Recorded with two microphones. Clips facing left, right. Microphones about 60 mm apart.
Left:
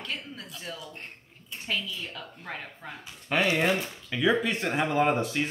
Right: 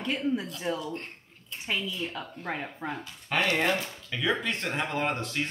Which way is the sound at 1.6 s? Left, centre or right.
Centre.